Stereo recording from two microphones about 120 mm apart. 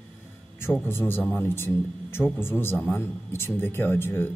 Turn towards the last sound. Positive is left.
turn(degrees=20)  # may be behind; listen again after turning